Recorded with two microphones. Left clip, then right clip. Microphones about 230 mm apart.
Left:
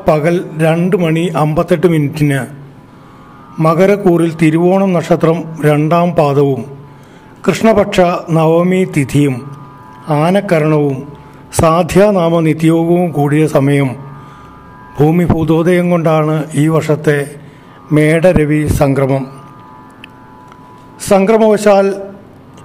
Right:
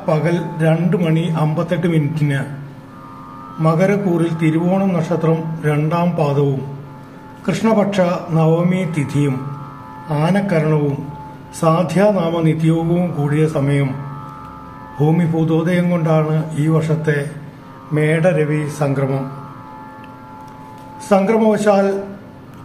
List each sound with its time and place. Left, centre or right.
0.0 s a man's voice: left
3.5 s a man's voice: left
15.0 s a man's voice: left
21.1 s a man's voice: left